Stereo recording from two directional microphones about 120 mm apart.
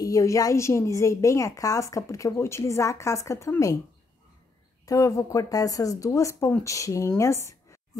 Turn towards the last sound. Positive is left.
turn(degrees=25)  # may be behind; listen again after turning